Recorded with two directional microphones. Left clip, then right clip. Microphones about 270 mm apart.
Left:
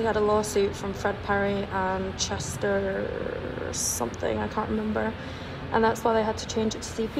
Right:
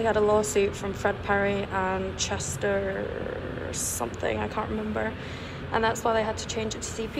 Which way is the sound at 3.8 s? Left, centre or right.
Centre.